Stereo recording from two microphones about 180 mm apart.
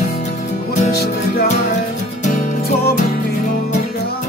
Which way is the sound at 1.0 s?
50° left (ahead or behind).